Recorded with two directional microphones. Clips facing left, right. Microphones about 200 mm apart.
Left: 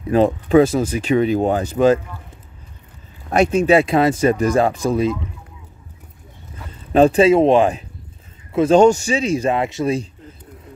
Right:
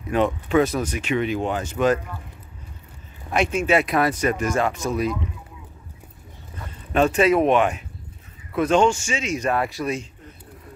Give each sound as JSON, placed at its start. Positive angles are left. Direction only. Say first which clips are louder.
{"t": 0.1, "sound": "speech", "louder": "left 6 dB", "side_deg": 35}
{"t": 3.3, "sound": "speech", "louder": "left 6 dB", "side_deg": 40}
{"t": 6.9, "sound": "speech", "louder": "left 6 dB", "side_deg": 30}